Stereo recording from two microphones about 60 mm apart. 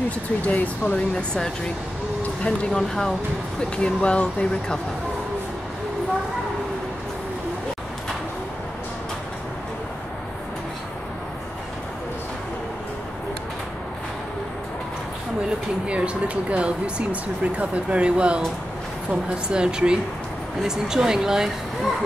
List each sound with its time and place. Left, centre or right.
0.5 s speech: left
2.4 s speech: centre
15.9 s speech: centre
19.5 s speech: centre